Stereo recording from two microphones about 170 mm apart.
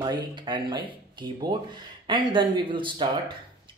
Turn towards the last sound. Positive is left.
turn(degrees=-30)  # may be behind; listen again after turning